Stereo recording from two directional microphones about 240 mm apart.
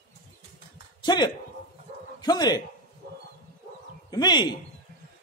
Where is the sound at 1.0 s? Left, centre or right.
Centre.